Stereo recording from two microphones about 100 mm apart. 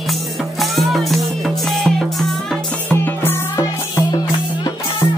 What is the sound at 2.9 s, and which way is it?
Music, 20° left (ahead or behind).